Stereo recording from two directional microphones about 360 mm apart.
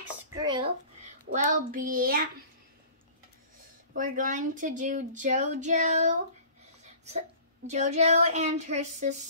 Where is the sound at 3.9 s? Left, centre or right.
Right.